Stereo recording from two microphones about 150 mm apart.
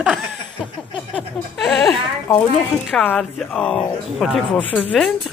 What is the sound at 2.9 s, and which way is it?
Speech, 10° left (ahead or behind).